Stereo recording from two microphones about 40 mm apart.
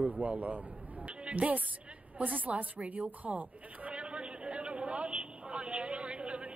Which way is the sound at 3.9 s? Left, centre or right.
Right.